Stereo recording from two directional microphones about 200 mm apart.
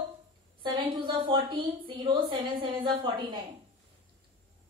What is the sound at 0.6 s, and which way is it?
A woman's voice, 25° right (ahead or behind).